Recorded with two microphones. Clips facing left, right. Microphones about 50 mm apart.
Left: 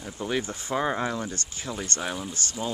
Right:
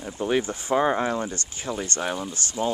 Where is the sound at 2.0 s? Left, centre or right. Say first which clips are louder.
Right 3 dB; centre.